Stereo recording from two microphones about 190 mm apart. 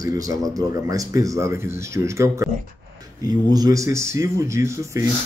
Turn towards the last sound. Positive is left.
turn(degrees=-15)  # may be behind; listen again after turning